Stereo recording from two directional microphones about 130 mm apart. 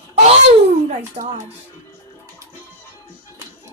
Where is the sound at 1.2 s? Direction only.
50° right (ahead or behind).